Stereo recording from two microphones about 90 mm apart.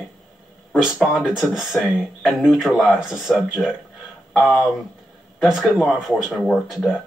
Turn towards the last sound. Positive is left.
turn(degrees=-5)  # may be behind; listen again after turning